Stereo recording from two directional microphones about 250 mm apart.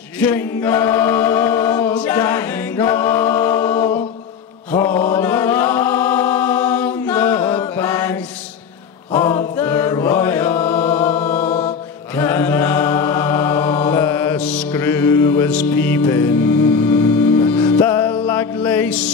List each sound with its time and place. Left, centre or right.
0.2 s choir: centre
4.7 s chant: centre
7.5 s mantra: centre
9.1 s chant: centre
11.3 s music: left
12.2 s chant: centre
18.2 s music: centre